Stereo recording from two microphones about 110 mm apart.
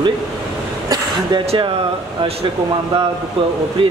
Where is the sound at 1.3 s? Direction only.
50° right (ahead or behind).